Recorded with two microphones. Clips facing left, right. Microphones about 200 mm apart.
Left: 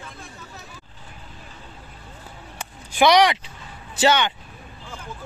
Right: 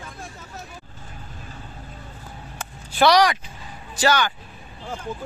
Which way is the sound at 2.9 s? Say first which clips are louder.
Left 1 dB; 20° left (ahead or behind).